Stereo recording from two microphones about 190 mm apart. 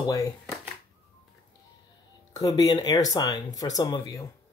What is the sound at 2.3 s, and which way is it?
Speech, 20° left (ahead or behind).